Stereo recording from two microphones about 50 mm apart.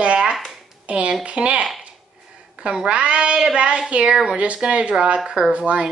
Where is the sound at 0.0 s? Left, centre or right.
Right.